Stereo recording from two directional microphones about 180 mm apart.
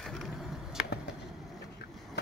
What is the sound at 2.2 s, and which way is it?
Skateboard, 65° left (ahead or behind).